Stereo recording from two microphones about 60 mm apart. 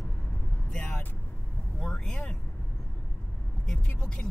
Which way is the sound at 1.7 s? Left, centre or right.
Centre.